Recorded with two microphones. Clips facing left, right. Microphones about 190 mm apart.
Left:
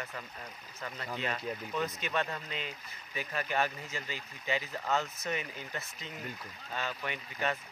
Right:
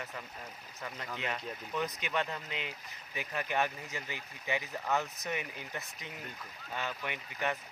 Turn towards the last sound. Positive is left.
turn(degrees=-15)  # may be behind; listen again after turning